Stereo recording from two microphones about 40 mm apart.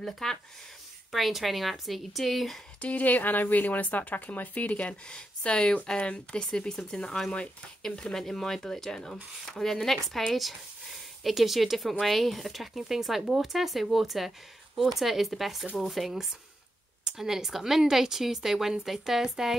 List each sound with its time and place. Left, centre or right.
0.0 s speech: centre
1.1 s speech: centre
2.8 s speech: left
5.0 s speech: left; by 19.5 s centre